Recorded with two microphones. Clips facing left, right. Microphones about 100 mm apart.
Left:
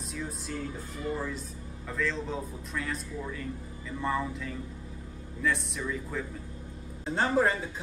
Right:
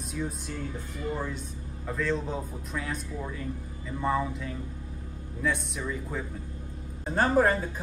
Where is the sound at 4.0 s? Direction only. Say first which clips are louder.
Right 3 dB; 5° right (ahead or behind).